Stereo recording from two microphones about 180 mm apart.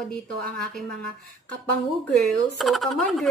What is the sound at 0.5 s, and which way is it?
Speech, 5° left (ahead or behind).